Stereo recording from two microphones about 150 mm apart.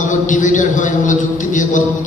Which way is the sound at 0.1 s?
55° left (ahead or behind).